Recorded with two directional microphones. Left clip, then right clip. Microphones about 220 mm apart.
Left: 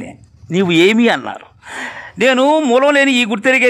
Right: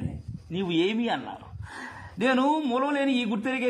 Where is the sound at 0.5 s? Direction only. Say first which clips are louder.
Left 15 dB; 50° left (ahead or behind).